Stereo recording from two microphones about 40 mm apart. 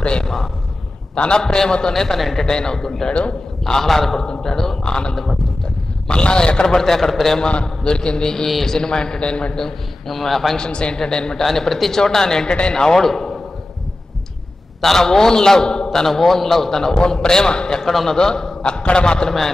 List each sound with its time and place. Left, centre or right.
0.0 s a sound: left
1.1 s a man's voice: left; by 2.4 s centre
2.4 s a man's voice: centre
6.0 s a man's voice: left; by 7.3 s centre
7.3 s a man's voice: left
9.7 s a man's voice: centre
10.6 s a man's voice: left
11.4 s a man's voice: centre
14.8 s a man's voice: centre
16.1 s a man's voice: centre